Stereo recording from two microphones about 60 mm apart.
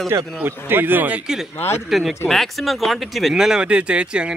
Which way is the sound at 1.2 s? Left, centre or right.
Centre.